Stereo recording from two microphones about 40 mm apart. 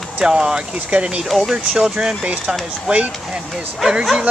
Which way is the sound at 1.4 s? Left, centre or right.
Centre.